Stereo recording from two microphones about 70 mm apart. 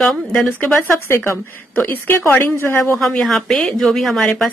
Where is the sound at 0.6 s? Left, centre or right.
Left.